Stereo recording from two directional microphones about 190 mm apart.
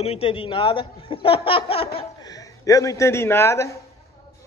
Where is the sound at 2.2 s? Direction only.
20° left (ahead or behind).